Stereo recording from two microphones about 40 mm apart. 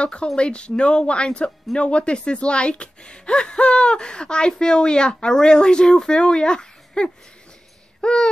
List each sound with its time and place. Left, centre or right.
0.0 s speech: left